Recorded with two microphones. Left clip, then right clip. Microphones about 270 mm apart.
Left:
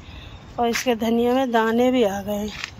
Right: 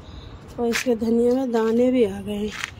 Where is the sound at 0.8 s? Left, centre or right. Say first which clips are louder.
Even; centre.